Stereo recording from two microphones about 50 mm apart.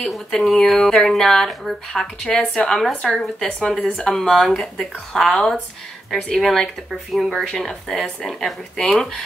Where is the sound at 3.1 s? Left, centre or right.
Centre.